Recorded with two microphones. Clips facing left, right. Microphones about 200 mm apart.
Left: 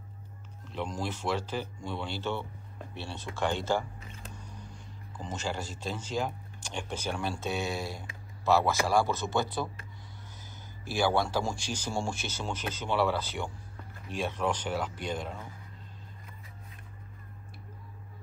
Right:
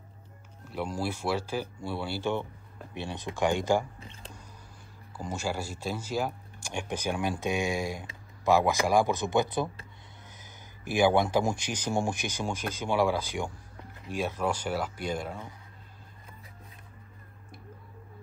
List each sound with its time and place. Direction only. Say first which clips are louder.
0.7 s speech: right 2 dB; 10° right (ahead or behind)
5.1 s speech: right 2 dB; 10° right (ahead or behind)
10.9 s speech: right 4 dB; 15° right (ahead or behind)